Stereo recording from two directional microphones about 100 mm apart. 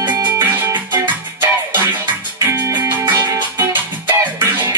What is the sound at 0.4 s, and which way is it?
Music, 25° right (ahead or behind).